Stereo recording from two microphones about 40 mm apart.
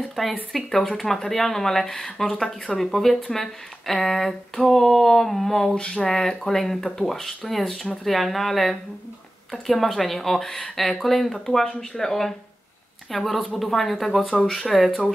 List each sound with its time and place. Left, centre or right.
0.1 s speech: centre
5.8 s speech: left
6.0 s speech: centre
11.6 s speech: centre